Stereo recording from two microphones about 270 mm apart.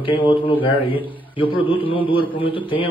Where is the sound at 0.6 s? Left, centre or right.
Centre.